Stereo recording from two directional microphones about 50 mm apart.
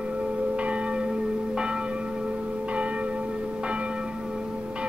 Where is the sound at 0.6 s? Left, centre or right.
Right.